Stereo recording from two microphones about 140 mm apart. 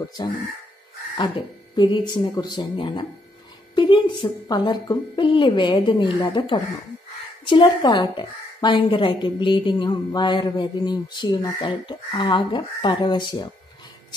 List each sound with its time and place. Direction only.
0.2 s a woman's voice: 30° left (ahead or behind)
1.8 s a woman's voice: 35° left (ahead or behind)